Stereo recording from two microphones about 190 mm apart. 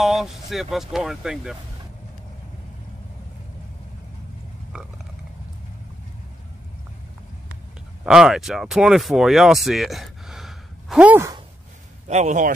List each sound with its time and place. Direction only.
0.0 s speech: centre (ahead or behind)
8.0 s speech: centre (ahead or behind)
12.1 s speech: 35° right (ahead or behind)